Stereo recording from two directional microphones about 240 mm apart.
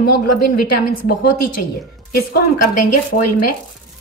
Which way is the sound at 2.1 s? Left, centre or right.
Left.